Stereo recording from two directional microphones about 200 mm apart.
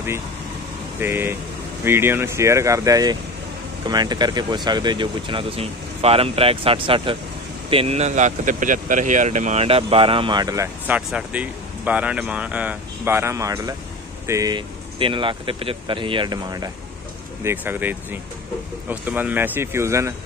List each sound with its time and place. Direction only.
1.0 s speech: 10° right (ahead or behind)
11.0 s speech: 5° right (ahead or behind)